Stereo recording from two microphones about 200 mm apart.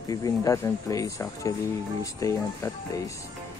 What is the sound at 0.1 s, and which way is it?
Speech, 15° left (ahead or behind).